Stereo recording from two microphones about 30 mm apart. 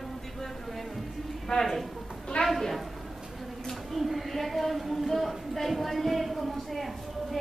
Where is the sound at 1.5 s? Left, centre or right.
Left.